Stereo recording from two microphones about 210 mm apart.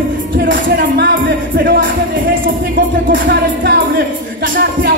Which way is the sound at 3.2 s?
55° right (ahead or behind).